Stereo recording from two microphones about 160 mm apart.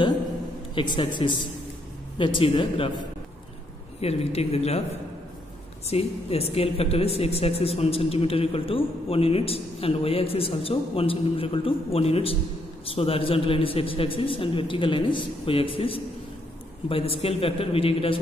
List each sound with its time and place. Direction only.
0.9 s a woman's voice: 30° left (ahead or behind)
4.0 s a woman's voice: 40° left (ahead or behind)
5.9 s a woman's voice: 40° left (ahead or behind)